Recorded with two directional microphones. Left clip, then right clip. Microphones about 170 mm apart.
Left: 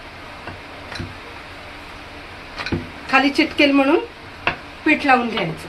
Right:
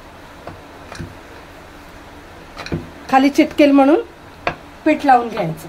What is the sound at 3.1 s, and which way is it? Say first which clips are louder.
Speech: right 3 dB; 90° right.